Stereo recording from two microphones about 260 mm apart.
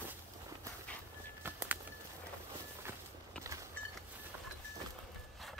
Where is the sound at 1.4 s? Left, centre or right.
Centre.